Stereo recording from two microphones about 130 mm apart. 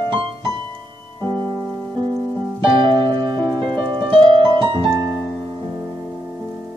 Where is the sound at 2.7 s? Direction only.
35° right (ahead or behind).